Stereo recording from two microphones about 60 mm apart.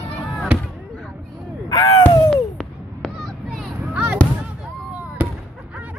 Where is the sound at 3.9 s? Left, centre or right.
Centre.